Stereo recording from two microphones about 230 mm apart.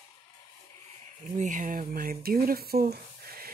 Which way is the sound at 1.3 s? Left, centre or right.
Right.